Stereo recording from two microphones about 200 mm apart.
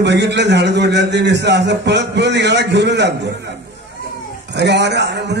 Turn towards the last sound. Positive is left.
turn(degrees=-60)  # may be behind; listen again after turning